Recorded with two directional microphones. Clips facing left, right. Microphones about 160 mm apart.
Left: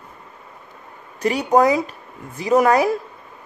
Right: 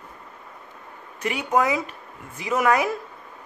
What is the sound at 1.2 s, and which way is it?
A woman's voice, 35° left (ahead or behind).